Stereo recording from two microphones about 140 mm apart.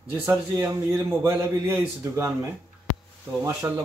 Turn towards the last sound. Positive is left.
turn(degrees=-20)  # may be behind; listen again after turning